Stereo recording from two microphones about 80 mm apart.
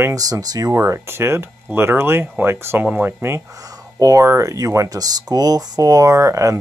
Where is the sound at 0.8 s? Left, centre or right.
Right.